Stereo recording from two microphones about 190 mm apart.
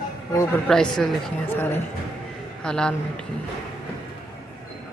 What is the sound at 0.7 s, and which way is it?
A man's voice, 5° left (ahead or behind).